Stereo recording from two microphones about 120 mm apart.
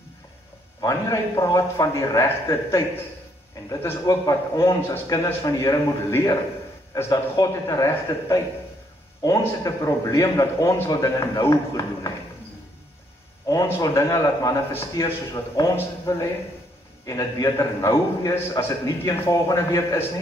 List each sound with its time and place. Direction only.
0.7 s a man's voice: 30° left (ahead or behind)
13.5 s a man's voice: 30° left (ahead or behind)
14.7 s a man's voice: 20° left (ahead or behind)